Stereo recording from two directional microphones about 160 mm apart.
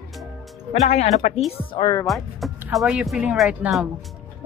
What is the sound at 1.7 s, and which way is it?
Speech, 25° left (ahead or behind).